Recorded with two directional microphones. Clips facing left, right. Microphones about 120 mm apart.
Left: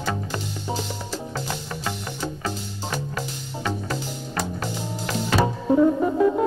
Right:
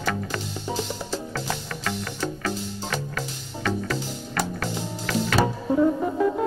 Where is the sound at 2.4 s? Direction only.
25° left (ahead or behind).